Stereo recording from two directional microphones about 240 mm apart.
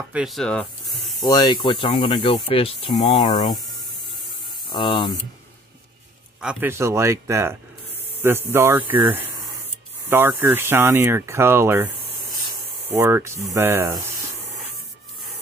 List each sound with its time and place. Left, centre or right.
0.1 s speech: centre
1.2 s speech: centre
4.6 s speech: centre
6.4 s speech: centre
12.9 s speech: centre